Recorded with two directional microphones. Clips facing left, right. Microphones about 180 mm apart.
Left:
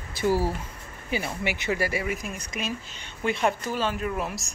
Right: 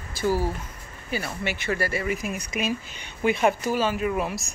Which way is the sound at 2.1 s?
5° right (ahead or behind).